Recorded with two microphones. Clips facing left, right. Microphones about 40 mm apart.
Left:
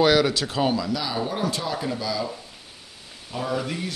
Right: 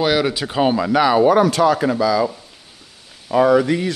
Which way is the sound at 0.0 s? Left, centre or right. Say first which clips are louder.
Right 1 dB; centre.